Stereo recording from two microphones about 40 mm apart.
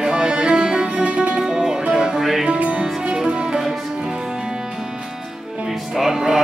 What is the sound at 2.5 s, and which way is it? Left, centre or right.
Music, right.